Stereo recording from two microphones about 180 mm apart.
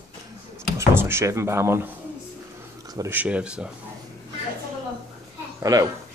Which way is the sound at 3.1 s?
5° right (ahead or behind).